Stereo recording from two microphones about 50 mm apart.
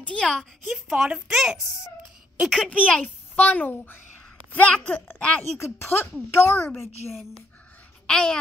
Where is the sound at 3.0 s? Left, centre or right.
Left.